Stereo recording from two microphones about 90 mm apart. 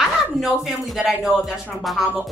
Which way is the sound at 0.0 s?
Centre (ahead or behind).